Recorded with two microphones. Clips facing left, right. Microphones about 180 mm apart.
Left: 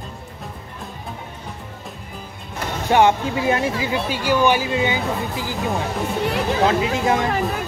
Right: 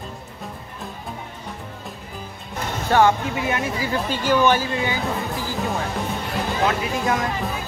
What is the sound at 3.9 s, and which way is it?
Speech, 10° left (ahead or behind).